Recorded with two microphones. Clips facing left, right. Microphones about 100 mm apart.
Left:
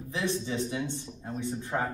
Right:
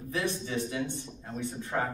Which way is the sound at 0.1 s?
20° left (ahead or behind).